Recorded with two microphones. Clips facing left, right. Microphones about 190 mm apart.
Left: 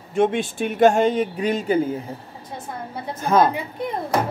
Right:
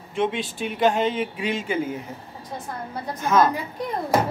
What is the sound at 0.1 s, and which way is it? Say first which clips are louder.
Speech: left 5 dB; 50° left (ahead or behind).